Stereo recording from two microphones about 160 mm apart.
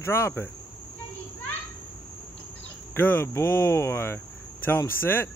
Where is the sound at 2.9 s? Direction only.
10° left (ahead or behind).